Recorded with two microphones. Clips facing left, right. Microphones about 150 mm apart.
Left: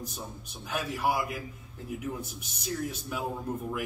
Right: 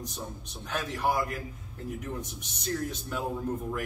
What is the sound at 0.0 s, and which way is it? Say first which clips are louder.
A man's voice: right 1 dB; 10° left (ahead or behind).